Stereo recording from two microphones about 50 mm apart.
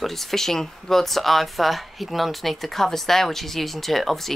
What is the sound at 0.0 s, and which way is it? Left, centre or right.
Speech, centre.